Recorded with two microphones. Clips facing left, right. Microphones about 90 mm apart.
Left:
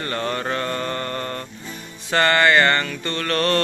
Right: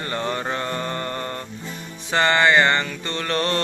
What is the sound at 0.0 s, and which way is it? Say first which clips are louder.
Mantra: left 1 dB; 20° right (ahead or behind).